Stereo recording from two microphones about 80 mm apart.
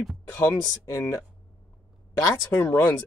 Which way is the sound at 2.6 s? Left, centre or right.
Left.